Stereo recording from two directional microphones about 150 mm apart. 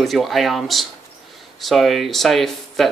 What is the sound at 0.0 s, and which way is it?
Speech, centre (ahead or behind).